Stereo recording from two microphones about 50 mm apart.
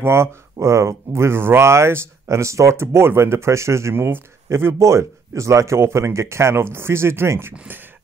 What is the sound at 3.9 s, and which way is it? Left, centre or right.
Speech, right.